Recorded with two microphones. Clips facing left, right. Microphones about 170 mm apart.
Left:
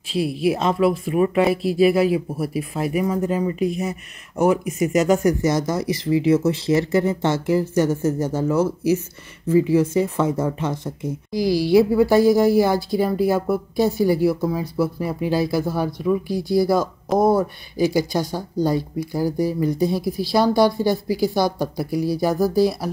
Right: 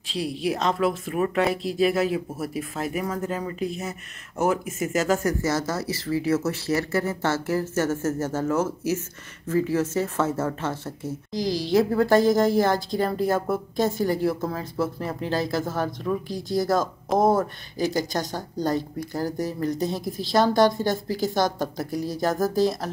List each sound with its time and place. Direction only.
0.1 s speech: 10° left (ahead or behind)